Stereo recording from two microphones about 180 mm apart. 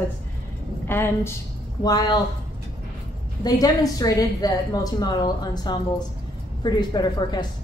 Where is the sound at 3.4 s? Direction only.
20° left (ahead or behind).